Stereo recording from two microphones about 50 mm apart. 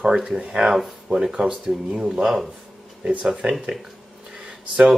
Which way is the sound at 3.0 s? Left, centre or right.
Right.